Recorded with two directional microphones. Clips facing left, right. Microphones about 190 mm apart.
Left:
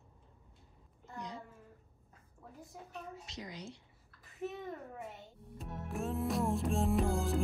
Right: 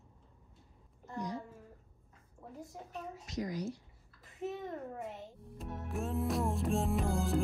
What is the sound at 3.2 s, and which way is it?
Speech, 25° left (ahead or behind).